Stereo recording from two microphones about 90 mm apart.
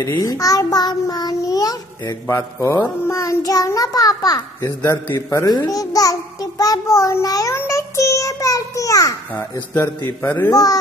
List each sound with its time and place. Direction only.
0.2 s a child's voice: 40° left (ahead or behind)
2.2 s child singing: 35° left (ahead or behind)
5.0 s speech: 30° left (ahead or behind)
5.7 s a child's voice: 40° left (ahead or behind)
7.5 s child singing: 35° left (ahead or behind)
9.3 s speech: 25° left (ahead or behind)
10.5 s child singing: 40° left (ahead or behind)